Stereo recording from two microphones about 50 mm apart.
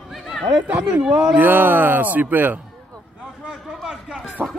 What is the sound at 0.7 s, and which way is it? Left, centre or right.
Speech, right.